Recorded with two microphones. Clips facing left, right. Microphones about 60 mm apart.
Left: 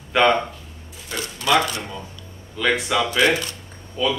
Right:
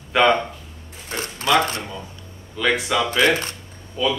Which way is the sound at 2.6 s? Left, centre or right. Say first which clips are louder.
Even; centre.